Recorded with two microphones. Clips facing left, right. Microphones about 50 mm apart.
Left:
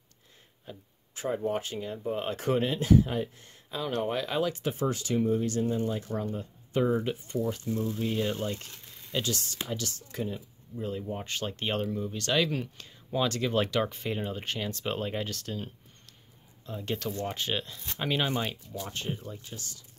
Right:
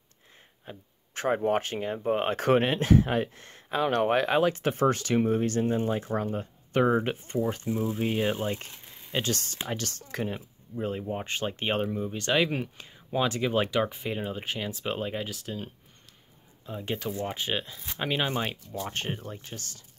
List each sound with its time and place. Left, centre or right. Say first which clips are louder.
0.7 s speech: right 1 dB; right
1.1 s speech: right 5 dB; right
8.4 s a sound: right 2 dB; right
9.1 s speech: right 2 dB; right
10.8 s speech: right 3 dB; right; by 18.5 s centre
18.5 s speech: right 3 dB; right